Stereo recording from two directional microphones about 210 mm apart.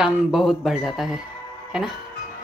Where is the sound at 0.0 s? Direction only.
Centre (ahead or behind).